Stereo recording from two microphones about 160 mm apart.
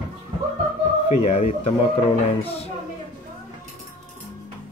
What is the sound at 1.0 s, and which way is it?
Speech, 40° left (ahead or behind).